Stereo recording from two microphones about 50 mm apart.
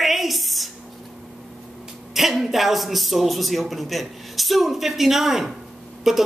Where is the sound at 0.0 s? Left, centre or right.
Centre.